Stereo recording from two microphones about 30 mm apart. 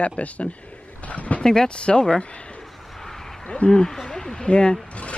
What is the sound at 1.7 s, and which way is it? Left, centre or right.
Speech, left.